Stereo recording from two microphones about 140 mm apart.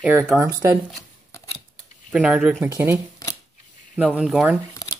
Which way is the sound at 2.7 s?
15° right (ahead or behind).